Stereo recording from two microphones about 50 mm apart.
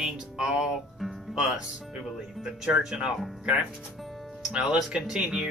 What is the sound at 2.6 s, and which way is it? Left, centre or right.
Speech, centre.